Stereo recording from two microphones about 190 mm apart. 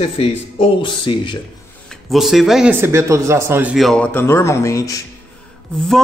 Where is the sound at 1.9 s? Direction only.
Centre (ahead or behind); by 5.0 s 15° left (ahead or behind).